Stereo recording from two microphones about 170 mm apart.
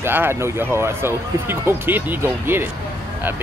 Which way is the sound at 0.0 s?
15° right (ahead or behind).